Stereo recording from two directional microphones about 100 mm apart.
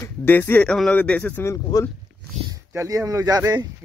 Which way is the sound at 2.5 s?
30° right (ahead or behind).